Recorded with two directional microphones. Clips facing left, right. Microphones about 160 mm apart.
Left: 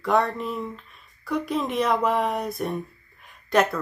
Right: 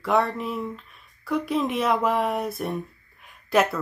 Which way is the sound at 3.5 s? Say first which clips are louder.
Even; 5° right (ahead or behind).